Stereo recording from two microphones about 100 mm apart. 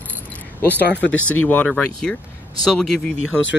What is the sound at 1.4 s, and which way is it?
Speech, 15° left (ahead or behind).